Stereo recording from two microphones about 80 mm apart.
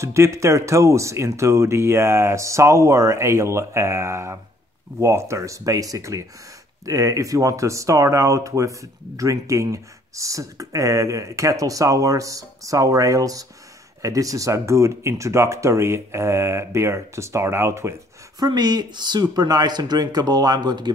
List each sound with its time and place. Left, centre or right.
0.0 s speech: right
18.4 s speech: right